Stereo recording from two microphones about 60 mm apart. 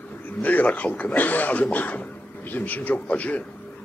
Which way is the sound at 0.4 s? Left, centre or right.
Left.